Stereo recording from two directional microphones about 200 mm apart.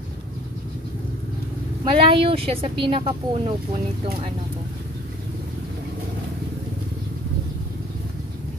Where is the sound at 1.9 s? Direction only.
25° right (ahead or behind).